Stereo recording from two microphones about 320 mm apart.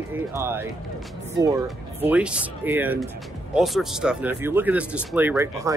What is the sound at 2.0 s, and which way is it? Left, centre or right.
Speech, centre.